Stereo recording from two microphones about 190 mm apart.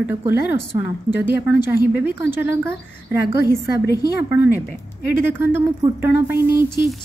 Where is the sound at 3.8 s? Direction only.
60° left (ahead or behind).